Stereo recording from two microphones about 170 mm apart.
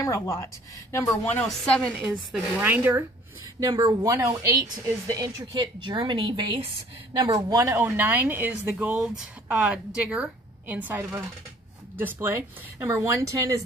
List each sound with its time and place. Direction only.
0.0 s speech: 20° left (ahead or behind)
1.0 s a woman's voice: 5° left (ahead or behind)
2.0 s speech: 10° right (ahead or behind)
3.5 s speech: 20° right (ahead or behind)